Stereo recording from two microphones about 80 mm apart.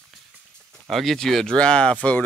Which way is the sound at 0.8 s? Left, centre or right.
Centre.